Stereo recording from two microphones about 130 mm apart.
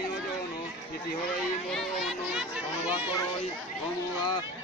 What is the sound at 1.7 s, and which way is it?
Speech, 5° right (ahead or behind).